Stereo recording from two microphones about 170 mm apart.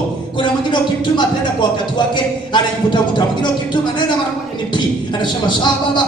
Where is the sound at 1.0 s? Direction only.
25° left (ahead or behind).